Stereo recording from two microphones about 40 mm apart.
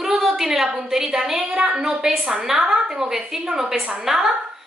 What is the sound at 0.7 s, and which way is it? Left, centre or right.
A woman's voice, centre.